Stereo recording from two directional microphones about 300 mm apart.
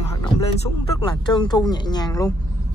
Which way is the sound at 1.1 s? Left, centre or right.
Centre.